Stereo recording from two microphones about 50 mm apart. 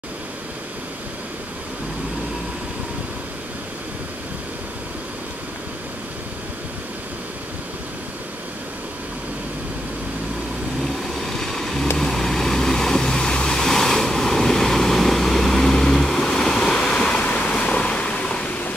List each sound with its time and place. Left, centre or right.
10.8 s vehicle: centre
17.3 s waves: left